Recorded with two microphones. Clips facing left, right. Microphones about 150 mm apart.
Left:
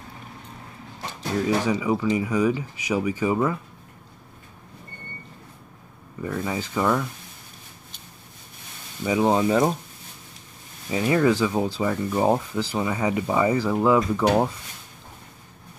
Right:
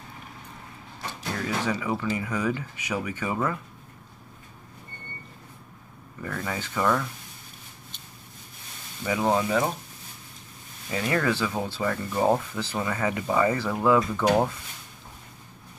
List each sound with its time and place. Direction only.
1.7 s speech: 15° left (ahead or behind)
6.2 s speech: 15° left (ahead or behind)
9.0 s speech: 20° left (ahead or behind)
10.9 s speech: 20° left (ahead or behind)